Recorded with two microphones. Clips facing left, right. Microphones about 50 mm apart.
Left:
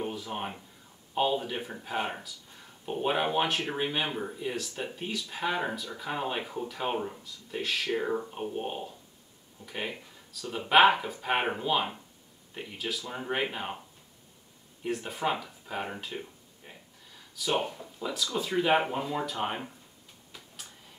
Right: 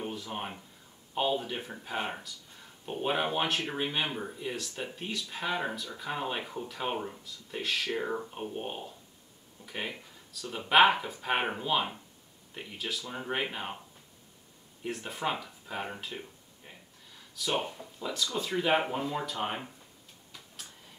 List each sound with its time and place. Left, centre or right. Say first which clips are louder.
0.0 s speech: left 2 dB; centre
14.8 s speech: left 3 dB; centre